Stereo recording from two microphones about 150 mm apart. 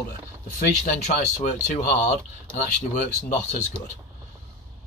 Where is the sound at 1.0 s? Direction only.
55° left (ahead or behind).